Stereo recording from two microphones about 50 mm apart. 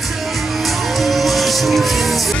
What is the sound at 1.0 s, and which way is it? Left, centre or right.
Music, centre.